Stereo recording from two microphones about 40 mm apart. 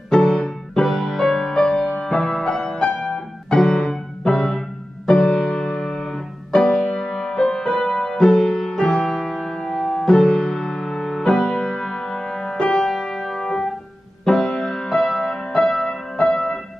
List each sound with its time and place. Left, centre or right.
0.1 s music: centre
0.8 s music: centre; by 7.0 s left
7.0 s music: centre
14.2 s music: centre